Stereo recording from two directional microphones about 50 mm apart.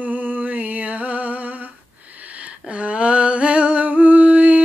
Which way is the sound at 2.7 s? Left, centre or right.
Right.